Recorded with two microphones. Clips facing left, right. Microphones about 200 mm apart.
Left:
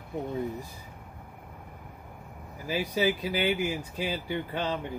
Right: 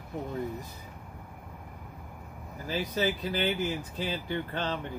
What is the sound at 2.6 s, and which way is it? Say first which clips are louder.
Speech: left 2 dB; 10° left (ahead or behind).